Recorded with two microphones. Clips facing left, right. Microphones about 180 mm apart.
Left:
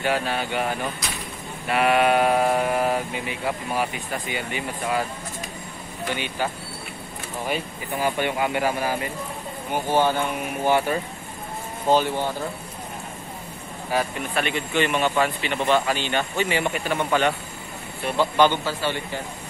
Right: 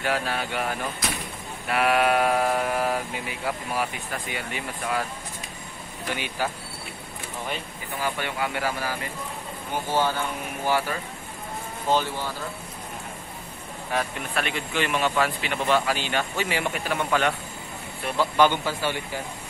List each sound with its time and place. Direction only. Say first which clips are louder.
0.0 s speech: left 3 dB; centre (ahead or behind)
6.1 s speech: left 1 dB; 5° right (ahead or behind)
7.4 s speech: left 7 dB; 15° left (ahead or behind)
13.9 s speech: left 3 dB; centre (ahead or behind)